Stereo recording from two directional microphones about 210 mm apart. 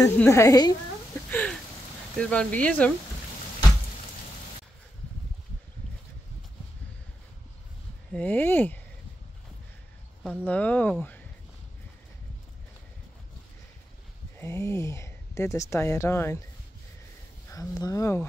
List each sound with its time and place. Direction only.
0.0 s a woman's voice: 15° left (ahead or behind)
1.3 s a sound: 5° left (ahead or behind)
2.1 s speech: 5° left (ahead or behind)
8.1 s a woman's voice: 10° left (ahead or behind)
10.4 s a woman's voice: 5° left (ahead or behind)
14.4 s a woman's voice: 10° left (ahead or behind)
17.5 s a woman's voice: 15° left (ahead or behind)